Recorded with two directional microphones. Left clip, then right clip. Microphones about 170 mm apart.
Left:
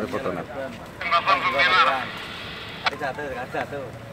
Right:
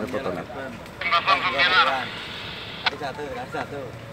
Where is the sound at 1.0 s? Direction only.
20° left (ahead or behind).